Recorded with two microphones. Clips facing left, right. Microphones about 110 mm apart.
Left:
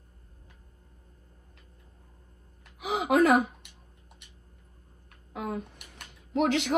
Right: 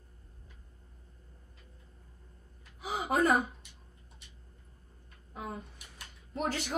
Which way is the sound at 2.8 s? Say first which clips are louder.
Left 6 dB; 75° left (ahead or behind).